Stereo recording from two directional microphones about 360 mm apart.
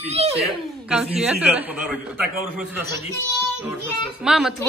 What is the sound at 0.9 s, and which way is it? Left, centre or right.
Speech, centre.